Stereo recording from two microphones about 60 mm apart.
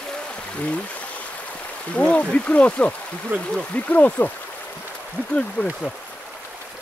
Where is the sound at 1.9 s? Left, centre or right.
Left.